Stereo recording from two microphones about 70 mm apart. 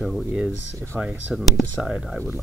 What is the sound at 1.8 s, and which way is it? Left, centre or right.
Speech, centre.